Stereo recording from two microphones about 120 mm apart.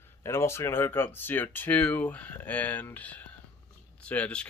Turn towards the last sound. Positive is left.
turn(degrees=10)  # may be behind; listen again after turning